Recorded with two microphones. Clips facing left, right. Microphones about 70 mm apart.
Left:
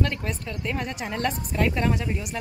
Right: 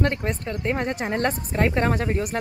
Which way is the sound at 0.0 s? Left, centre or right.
Right.